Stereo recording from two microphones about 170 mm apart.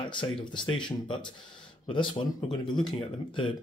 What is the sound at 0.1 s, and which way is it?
Speech, 30° left (ahead or behind).